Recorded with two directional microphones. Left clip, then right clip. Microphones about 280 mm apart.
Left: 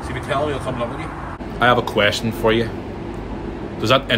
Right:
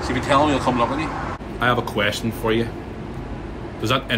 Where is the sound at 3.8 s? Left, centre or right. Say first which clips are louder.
Left 5 dB; centre.